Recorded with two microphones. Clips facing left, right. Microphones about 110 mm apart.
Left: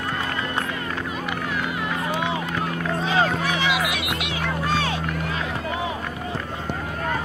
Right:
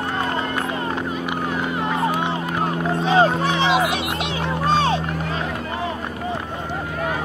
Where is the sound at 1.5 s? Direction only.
30° right (ahead or behind).